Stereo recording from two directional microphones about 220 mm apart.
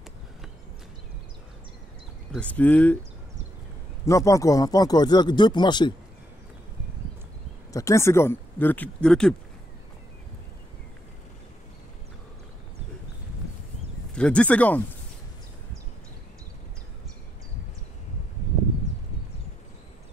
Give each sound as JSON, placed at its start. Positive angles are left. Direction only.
{"t": 2.3, "sound": "speech", "side_deg": 5}
{"t": 4.0, "sound": "speech", "side_deg": 15}
{"t": 7.7, "sound": "speech", "side_deg": 15}
{"t": 14.1, "sound": "speech", "side_deg": 5}